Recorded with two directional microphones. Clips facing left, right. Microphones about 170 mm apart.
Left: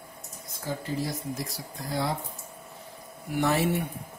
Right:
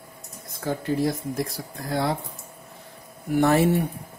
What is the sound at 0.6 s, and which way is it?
Speech, 55° right (ahead or behind).